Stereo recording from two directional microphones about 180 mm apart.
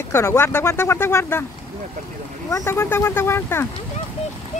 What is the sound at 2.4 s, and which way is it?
Speech, 20° left (ahead or behind).